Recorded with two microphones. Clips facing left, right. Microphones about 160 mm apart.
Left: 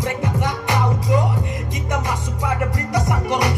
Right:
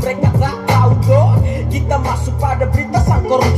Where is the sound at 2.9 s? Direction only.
35° right (ahead or behind).